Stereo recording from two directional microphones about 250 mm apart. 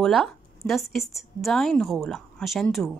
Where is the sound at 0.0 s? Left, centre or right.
Centre.